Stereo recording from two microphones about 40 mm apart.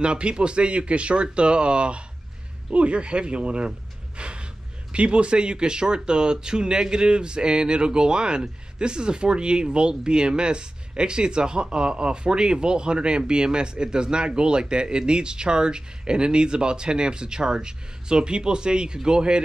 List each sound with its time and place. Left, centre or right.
0.0 s speech: right
4.2 s gasp: right
4.9 s speech: right